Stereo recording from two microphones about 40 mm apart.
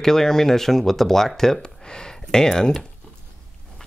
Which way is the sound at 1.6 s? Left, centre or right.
Centre.